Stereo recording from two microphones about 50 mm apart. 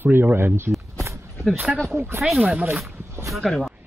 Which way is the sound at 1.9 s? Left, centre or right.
Right.